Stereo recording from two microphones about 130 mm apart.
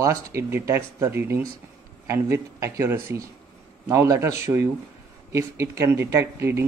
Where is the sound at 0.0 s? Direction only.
25° right (ahead or behind).